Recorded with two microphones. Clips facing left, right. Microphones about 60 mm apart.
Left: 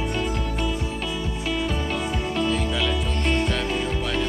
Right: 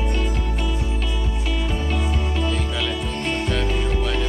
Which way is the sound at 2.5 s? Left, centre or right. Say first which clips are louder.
Left 1 dB; centre.